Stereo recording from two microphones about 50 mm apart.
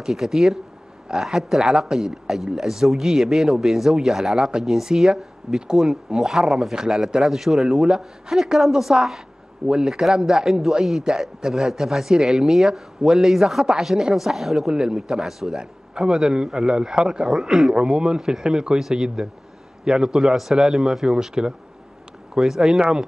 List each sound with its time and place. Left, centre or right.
0.0 s speech: centre
4.4 s a man's voice: centre
14.7 s a man's voice: centre